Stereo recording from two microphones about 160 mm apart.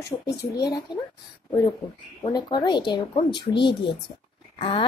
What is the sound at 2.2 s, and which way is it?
A child's voice, 25° left (ahead or behind).